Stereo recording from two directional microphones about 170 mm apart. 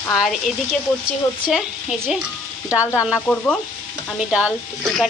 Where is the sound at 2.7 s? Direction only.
15° left (ahead or behind).